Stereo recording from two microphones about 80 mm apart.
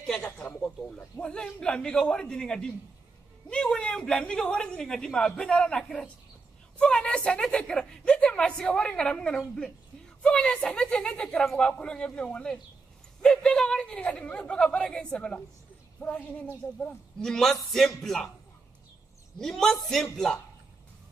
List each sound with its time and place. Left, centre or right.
0.0 s a sound: centre
0.6 s a woman's voice: centre
17.2 s a man's voice: centre
19.3 s a man's voice: centre